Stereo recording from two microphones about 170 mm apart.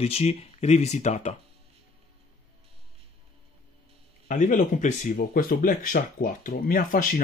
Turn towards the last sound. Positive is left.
turn(degrees=55)  # may be behind; listen again after turning